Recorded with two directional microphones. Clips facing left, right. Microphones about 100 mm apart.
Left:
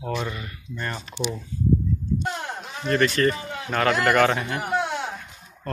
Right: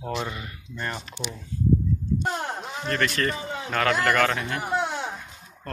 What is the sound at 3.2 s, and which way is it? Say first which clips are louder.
Speech: left 4 dB; 5° left (ahead or behind).